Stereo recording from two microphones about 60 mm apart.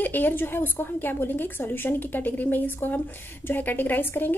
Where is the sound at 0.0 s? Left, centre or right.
Left.